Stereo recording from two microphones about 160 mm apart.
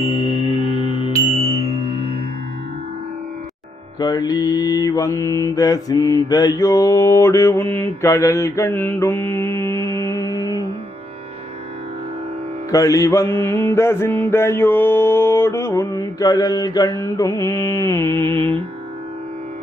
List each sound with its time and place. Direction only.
0.1 s music: 35° left (ahead or behind)
4.0 s mantra: 25° left (ahead or behind)
12.7 s mantra: 20° left (ahead or behind)